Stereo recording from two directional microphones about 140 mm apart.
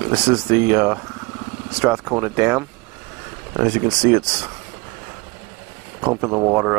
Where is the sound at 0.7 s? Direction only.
15° right (ahead or behind).